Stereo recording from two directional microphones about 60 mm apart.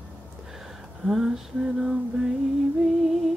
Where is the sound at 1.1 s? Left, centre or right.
Centre.